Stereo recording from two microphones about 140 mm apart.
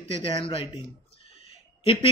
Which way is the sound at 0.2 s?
40° left (ahead or behind).